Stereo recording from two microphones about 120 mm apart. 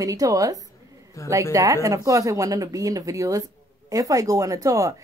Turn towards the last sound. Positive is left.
turn(degrees=-30)  # may be behind; listen again after turning